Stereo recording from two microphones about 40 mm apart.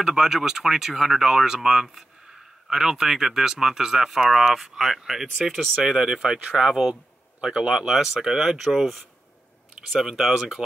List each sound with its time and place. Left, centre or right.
0.0 s speech: centre
10.1 s speech: centre